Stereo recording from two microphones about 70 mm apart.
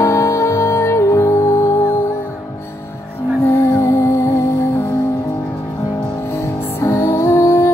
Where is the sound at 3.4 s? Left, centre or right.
Left.